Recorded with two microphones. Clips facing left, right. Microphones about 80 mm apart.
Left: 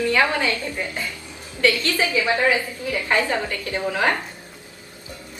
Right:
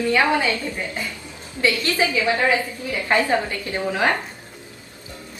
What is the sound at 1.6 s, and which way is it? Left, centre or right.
A woman's voice, centre.